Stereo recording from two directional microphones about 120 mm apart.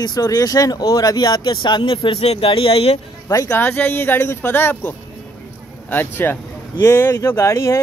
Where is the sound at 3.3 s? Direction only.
25° left (ahead or behind).